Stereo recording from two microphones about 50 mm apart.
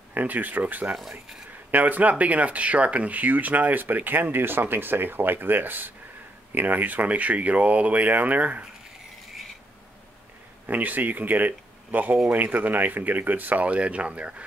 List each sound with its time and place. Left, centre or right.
0.1 s speech: right
10.7 s speech: right